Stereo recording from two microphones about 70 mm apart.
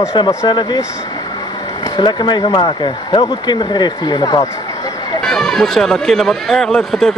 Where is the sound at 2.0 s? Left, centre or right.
Left.